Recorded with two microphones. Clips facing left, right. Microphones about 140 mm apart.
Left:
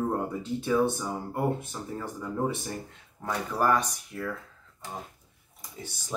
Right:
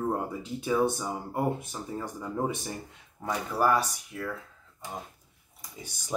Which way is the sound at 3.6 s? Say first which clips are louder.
Even; 5° right (ahead or behind).